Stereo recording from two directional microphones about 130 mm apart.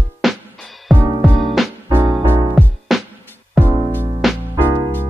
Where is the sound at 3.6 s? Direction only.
15° left (ahead or behind).